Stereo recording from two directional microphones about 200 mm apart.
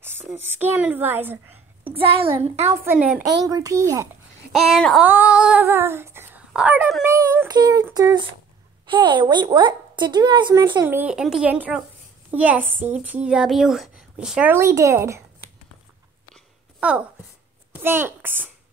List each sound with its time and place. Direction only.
0.0 s a woman's voice: 10° right (ahead or behind)
2.0 s a woman's voice: 25° right (ahead or behind)
2.7 s a woman's voice: 10° right (ahead or behind)
3.3 s a woman's voice: 20° right (ahead or behind)
4.5 s speech: centre (ahead or behind)
5.0 s female singing: 10° right (ahead or behind)
7.1 s a woman's voice: 15° right (ahead or behind)
10.9 s a woman's voice: 5° right (ahead or behind)
16.8 s a woman's voice: 5° right (ahead or behind)